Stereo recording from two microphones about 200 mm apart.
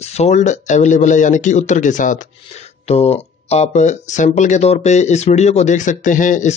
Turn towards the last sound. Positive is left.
turn(degrees=40)  # may be behind; listen again after turning